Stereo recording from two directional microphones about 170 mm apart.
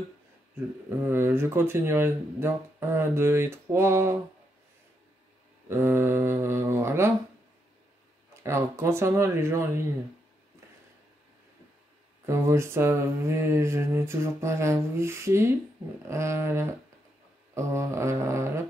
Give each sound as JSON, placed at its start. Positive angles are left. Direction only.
{"t": 0.8, "sound": "speech", "side_deg": -15}
{"t": 5.7, "sound": "speech", "side_deg": -15}
{"t": 8.4, "sound": "speech", "side_deg": -15}
{"t": 12.3, "sound": "speech", "side_deg": -15}